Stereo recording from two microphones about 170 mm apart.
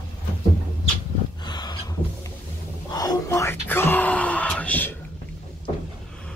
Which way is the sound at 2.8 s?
20° left (ahead or behind).